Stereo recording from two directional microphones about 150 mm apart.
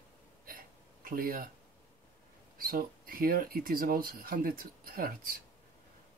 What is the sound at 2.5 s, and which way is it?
Speech, 75° right (ahead or behind).